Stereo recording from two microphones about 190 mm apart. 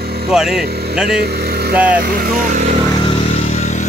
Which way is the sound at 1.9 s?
50° right (ahead or behind).